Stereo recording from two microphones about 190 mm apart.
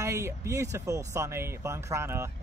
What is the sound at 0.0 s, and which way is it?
Speech, 15° right (ahead or behind).